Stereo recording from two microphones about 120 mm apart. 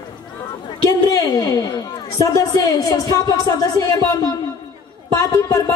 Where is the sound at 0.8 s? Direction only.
30° left (ahead or behind).